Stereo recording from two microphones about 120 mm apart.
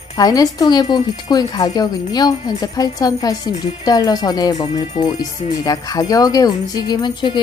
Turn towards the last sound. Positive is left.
turn(degrees=40)  # may be behind; listen again after turning